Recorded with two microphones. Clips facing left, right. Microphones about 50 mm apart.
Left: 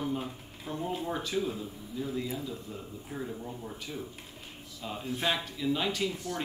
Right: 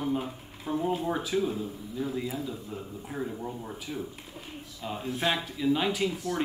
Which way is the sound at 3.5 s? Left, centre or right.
Centre.